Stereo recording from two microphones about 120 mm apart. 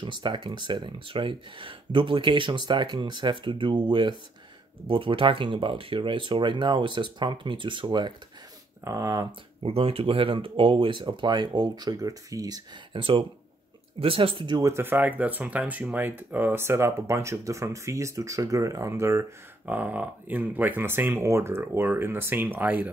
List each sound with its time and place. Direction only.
0.0 s speech: 40° right (ahead or behind)
8.8 s speech: 30° right (ahead or behind)
9.7 s speech: 55° right (ahead or behind); by 12.6 s 30° right (ahead or behind)
12.9 s speech: 45° right (ahead or behind)
14.7 s speech: 20° right (ahead or behind)